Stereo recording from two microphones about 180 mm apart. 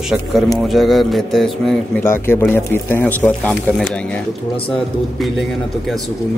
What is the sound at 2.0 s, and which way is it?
Speech, 10° left (ahead or behind).